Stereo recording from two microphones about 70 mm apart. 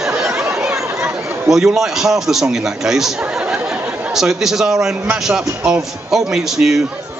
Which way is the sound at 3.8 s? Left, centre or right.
Right.